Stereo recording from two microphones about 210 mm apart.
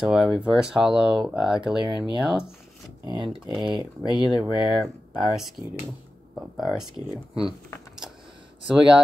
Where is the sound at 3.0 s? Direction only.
20° right (ahead or behind).